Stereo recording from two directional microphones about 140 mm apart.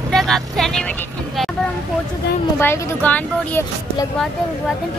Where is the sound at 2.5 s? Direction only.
20° left (ahead or behind).